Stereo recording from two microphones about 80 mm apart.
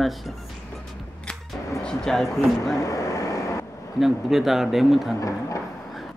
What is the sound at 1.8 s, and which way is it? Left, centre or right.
Speech, centre.